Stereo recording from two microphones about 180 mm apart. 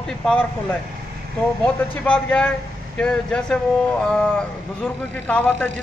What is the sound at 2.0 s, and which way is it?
A man's voice, 5° left (ahead or behind).